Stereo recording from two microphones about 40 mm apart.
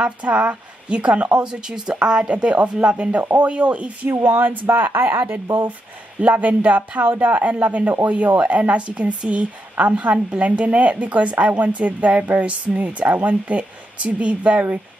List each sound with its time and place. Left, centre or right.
0.0 s speech: right
1.5 s speech: centre; by 4.1 s right
4.2 s speech: right
6.2 s speech: right